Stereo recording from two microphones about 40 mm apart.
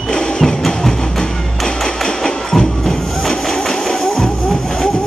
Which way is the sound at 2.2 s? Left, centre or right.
Centre.